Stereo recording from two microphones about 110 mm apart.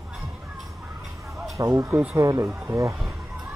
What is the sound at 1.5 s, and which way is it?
Speech, 35° right (ahead or behind).